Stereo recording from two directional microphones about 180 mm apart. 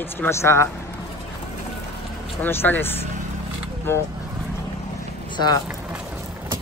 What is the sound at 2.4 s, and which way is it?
Speech, 10° left (ahead or behind).